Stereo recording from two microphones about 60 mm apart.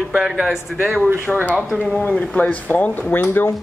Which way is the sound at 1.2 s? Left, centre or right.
Right.